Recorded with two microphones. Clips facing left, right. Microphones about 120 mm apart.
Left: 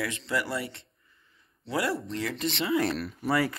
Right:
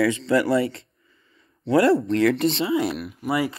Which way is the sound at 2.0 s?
90° right.